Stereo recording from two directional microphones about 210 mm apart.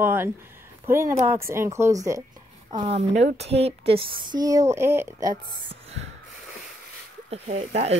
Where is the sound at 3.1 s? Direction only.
30° right (ahead or behind); by 5.3 s 10° right (ahead or behind).